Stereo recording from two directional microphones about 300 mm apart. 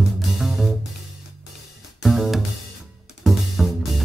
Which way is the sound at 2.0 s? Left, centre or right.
Centre.